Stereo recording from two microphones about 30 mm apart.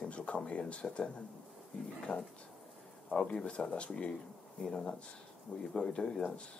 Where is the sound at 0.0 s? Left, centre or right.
Left.